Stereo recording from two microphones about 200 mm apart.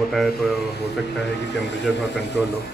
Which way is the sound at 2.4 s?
Centre (ahead or behind).